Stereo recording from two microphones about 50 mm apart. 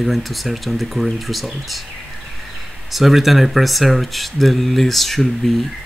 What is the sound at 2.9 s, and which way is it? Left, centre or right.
Speech, centre.